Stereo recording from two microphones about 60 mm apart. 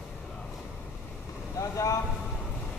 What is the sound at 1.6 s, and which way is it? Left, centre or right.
Vehicle, left.